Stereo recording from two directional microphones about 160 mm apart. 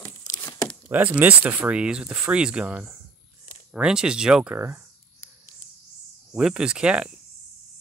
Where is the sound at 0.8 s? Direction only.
10° right (ahead or behind).